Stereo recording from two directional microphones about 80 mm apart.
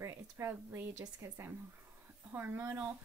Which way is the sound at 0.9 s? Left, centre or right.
Right.